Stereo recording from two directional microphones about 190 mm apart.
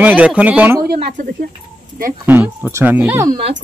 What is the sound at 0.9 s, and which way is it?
Speech, 55° right (ahead or behind).